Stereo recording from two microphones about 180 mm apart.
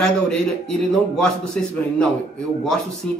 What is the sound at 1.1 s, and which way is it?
Speech, 5° left (ahead or behind).